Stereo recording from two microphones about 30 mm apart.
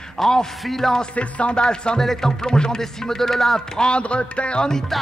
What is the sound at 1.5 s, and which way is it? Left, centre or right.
Music, left.